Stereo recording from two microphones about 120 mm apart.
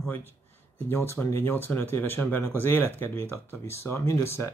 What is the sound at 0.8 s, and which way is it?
Speech, 20° left (ahead or behind).